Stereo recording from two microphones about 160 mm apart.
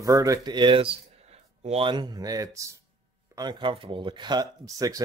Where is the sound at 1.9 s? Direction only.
25° right (ahead or behind).